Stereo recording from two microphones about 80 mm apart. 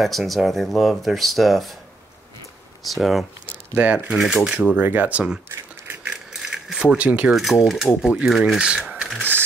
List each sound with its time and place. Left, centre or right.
0.0 s speech: centre
2.8 s speech: centre
3.7 s speech: right
4.2 s speech: centre
4.7 s speech: right
6.3 s a sound: centre
7.3 s speech: centre
8.1 s speech: centre